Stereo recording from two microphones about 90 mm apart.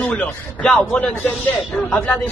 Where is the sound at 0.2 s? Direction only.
15° left (ahead or behind).